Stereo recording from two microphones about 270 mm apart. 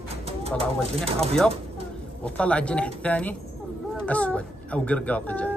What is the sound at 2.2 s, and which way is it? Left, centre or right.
Speech, centre.